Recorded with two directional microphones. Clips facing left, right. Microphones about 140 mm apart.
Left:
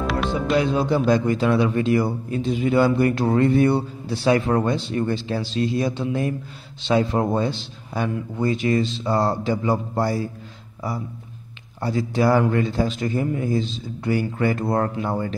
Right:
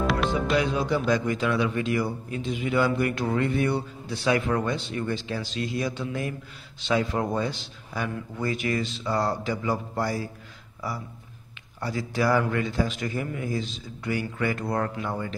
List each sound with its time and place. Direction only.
0.0 s music: centre (ahead or behind)
0.6 s a man's voice: 30° left (ahead or behind)